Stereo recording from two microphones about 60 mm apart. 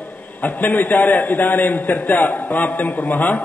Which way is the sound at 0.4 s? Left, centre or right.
Left.